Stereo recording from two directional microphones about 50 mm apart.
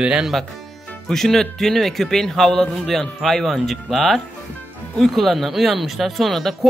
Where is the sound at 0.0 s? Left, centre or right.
Centre.